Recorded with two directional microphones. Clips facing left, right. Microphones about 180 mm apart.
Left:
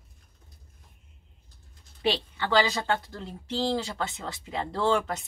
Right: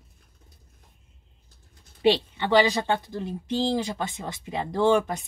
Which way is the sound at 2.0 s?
20° right (ahead or behind).